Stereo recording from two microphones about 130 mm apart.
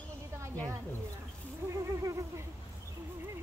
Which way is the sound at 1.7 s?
25° right (ahead or behind).